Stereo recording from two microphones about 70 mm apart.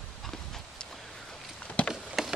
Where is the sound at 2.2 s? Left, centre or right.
Centre.